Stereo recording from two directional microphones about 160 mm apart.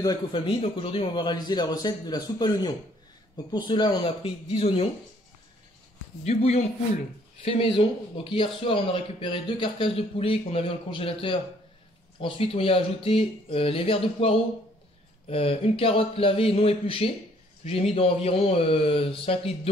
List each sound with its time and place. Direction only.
0.0 s a man's voice: 25° left (ahead or behind)
6.2 s speech: 40° left (ahead or behind)